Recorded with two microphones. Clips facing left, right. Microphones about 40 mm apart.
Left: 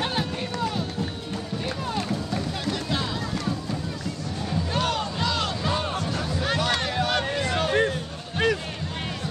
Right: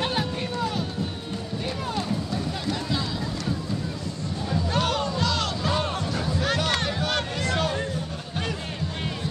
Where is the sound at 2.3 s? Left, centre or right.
Left.